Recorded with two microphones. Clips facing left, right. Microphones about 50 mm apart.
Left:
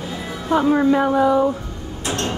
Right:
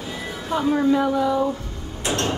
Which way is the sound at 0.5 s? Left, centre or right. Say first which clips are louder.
Left 4 dB; centre.